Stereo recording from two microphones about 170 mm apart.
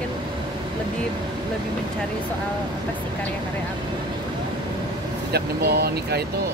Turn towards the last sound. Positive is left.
turn(degrees=-70)  # may be behind; listen again after turning